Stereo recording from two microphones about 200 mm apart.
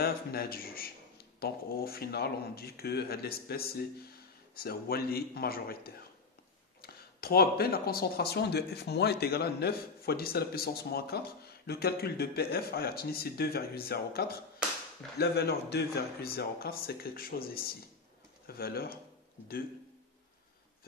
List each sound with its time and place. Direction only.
0.0 s speech: 50° left (ahead or behind)